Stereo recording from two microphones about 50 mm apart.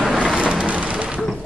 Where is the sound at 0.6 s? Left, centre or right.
Right.